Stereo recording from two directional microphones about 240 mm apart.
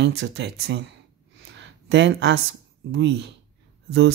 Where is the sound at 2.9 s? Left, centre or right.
Right.